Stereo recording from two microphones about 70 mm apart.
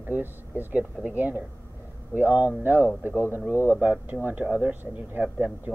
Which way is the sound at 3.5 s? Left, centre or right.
Left.